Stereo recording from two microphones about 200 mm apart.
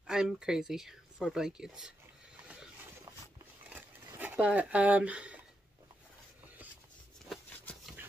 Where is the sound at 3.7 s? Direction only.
10° right (ahead or behind).